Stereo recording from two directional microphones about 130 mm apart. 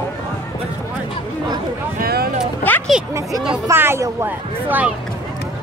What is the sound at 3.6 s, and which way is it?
Speech, 20° right (ahead or behind).